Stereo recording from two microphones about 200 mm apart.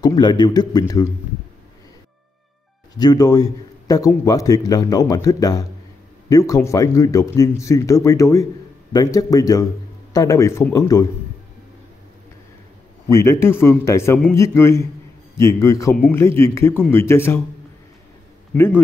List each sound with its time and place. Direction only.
0.0 s a man's voice: 20° left (ahead or behind)
3.0 s a man's voice: 20° left (ahead or behind)
13.1 s a man's voice: 15° left (ahead or behind)
18.5 s a man's voice: 10° left (ahead or behind)